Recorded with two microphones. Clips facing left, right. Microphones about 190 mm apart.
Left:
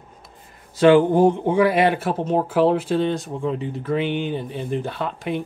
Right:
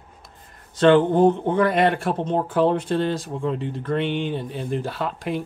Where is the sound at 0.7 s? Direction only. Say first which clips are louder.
Left 2 dB; 10° left (ahead or behind).